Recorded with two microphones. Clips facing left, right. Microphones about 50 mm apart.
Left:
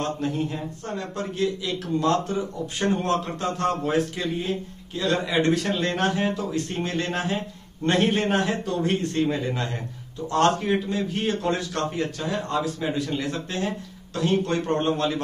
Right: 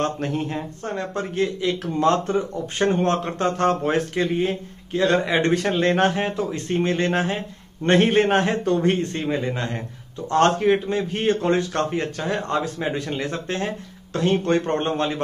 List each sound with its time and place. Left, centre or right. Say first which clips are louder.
0.0 s a man's voice: right 2 dB; right
9.1 s a man's voice: even; right
10.3 s a man's voice: right 3 dB; right